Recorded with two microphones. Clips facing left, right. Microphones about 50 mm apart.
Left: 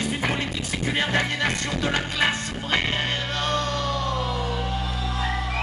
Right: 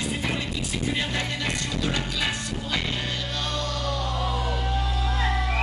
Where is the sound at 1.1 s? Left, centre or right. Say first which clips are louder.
Left 5 dB; left.